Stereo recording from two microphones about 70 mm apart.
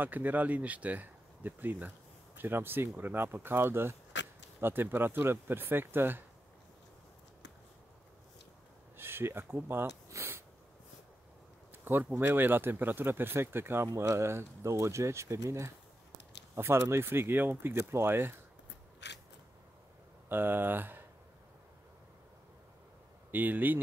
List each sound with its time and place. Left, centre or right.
0.0 s speech: right
8.9 s speech: right
11.8 s speech: right
20.2 s speech: right
23.3 s speech: right